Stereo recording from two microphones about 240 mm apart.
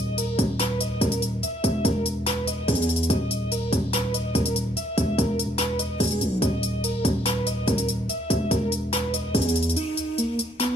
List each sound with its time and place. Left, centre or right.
0.4 s music: left